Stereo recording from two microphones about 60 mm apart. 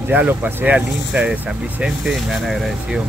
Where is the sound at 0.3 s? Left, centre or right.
Right; by 2.1 s centre.